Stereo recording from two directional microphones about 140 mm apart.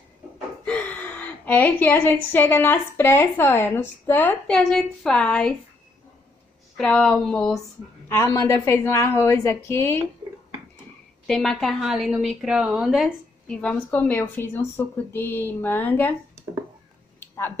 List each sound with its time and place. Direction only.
0.7 s a woman's voice: 10° left (ahead or behind)
6.8 s speech: 5° left (ahead or behind)
8.1 s a woman's voice: 20° left (ahead or behind)
11.2 s speech: 5° left (ahead or behind)
13.5 s a woman's voice: 10° left (ahead or behind)
17.2 s a sound: 15° left (ahead or behind)